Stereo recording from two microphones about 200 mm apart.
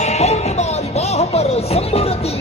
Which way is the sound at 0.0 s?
35° left (ahead or behind).